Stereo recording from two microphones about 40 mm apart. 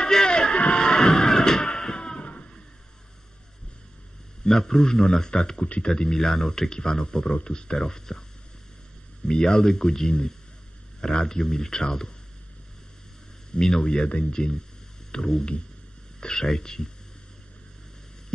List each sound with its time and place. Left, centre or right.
0.0 s music: centre
4.5 s speech: centre
9.3 s speech: centre
13.6 s speech: centre
15.0 s a sound: left
16.2 s speech: centre